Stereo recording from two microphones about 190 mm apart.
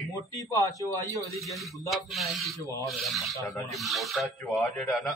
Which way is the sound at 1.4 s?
Centre (ahead or behind).